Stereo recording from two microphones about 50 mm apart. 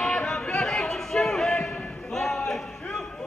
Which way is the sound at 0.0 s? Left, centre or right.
Centre.